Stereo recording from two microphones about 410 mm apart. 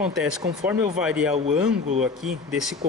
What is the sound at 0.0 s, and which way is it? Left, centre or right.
Speech, centre.